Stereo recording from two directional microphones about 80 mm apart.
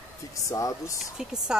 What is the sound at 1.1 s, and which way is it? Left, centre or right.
Speech, centre.